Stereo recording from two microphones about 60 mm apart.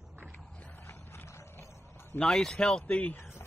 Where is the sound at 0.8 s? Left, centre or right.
Left.